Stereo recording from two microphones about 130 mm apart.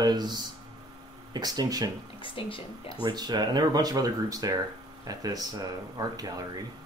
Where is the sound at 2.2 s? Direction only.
40° left (ahead or behind).